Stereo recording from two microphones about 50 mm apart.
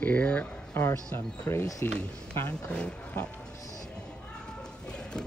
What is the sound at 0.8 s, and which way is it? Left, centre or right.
Speech, left.